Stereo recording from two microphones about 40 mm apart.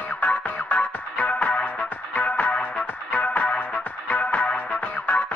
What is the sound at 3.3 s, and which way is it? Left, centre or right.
Music, left.